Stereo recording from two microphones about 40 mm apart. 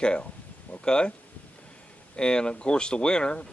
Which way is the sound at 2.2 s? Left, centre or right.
Left.